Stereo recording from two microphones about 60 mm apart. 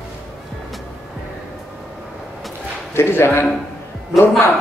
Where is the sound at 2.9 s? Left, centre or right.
Left.